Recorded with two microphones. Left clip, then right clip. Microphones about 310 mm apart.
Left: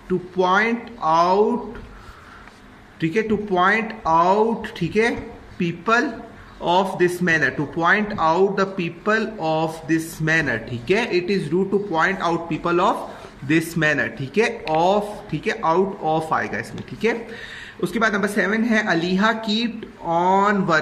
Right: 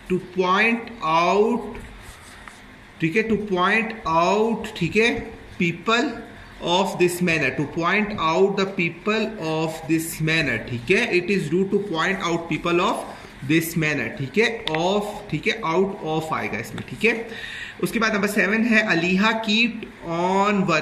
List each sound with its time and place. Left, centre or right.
0.1 s a man's voice: centre
3.0 s a man's voice: centre
20.1 s speech: centre
20.3 s a man's voice: centre